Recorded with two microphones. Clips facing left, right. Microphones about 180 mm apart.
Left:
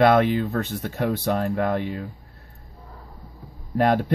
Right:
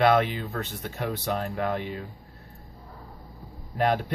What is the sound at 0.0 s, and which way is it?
Speech, 50° left (ahead or behind).